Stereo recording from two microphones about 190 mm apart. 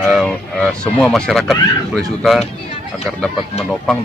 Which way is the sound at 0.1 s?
Centre (ahead or behind).